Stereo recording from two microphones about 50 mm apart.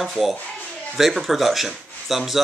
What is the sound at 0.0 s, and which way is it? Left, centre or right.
Speech, centre.